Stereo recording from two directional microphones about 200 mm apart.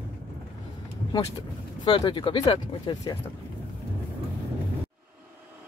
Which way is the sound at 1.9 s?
25° left (ahead or behind).